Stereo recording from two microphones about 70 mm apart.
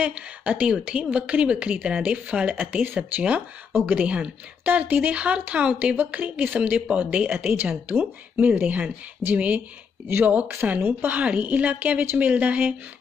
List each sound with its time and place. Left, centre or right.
0.0 s speech: centre